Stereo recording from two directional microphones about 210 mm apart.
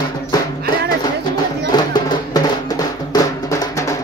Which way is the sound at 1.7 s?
20° left (ahead or behind).